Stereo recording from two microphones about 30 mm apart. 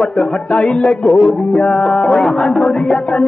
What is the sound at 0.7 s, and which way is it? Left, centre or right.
Music, left.